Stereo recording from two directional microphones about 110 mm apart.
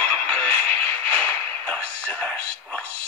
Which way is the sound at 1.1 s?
10° left (ahead or behind).